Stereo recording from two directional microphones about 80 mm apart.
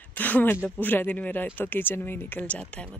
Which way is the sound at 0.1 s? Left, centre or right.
Left.